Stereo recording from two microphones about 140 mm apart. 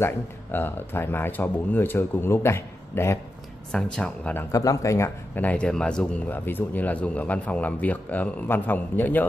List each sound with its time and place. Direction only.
0.0 s speech: 15° left (ahead or behind)
3.7 s speech: 5° left (ahead or behind)